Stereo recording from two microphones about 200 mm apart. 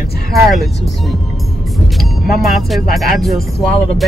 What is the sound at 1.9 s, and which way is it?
Music, centre (ahead or behind).